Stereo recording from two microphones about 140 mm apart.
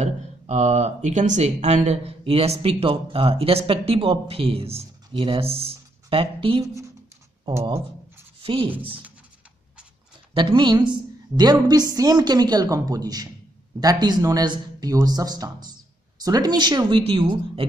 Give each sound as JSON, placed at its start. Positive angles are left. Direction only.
{"t": 0.0, "sound": "speech", "side_deg": -55}
{"t": 6.6, "sound": "a woman's voice", "side_deg": -20}
{"t": 8.4, "sound": "speech", "side_deg": -40}
{"t": 10.3, "sound": "a woman's voice", "side_deg": -35}